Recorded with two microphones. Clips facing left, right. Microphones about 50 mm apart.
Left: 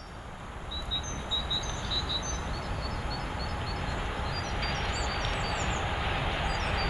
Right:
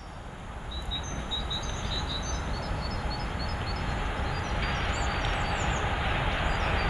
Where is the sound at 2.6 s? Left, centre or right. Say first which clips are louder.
Right 1 dB; centre.